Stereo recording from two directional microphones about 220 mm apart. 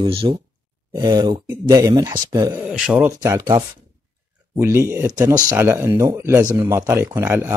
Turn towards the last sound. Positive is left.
turn(degrees=-10)  # may be behind; listen again after turning